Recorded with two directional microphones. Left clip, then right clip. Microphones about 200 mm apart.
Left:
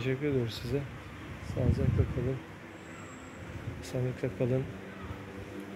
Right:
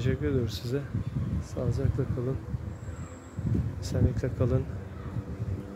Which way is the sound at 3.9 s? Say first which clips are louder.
Right 1 dB; 5° right (ahead or behind).